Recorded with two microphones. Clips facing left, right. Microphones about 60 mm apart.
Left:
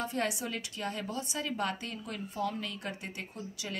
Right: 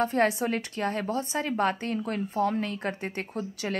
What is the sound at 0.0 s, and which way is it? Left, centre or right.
A woman's voice, right.